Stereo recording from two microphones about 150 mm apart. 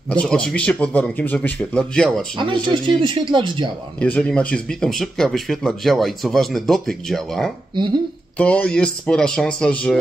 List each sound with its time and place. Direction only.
0.1 s a man's voice: 5° left (ahead or behind)
2.3 s speech: 35° right (ahead or behind)
4.0 s speech: 5° left (ahead or behind)